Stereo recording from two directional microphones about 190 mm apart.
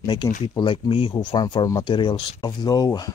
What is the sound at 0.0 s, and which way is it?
Speech, 25° left (ahead or behind).